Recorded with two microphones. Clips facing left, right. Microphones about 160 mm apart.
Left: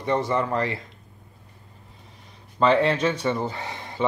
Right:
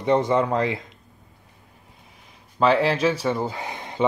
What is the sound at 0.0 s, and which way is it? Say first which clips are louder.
Speech: right 4 dB; 20° right (ahead or behind).